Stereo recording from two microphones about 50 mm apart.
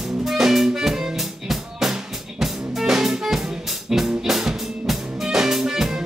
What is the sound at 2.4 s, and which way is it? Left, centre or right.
Music, centre.